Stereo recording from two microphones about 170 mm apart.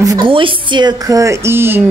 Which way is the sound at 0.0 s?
25° right (ahead or behind).